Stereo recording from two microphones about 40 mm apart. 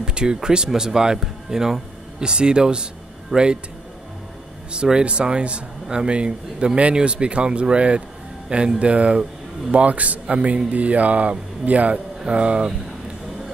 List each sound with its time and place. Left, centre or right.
0.0 s speech: right
5.0 s speech: right